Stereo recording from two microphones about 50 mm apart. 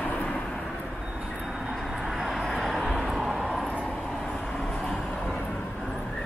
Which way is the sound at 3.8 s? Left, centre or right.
Centre.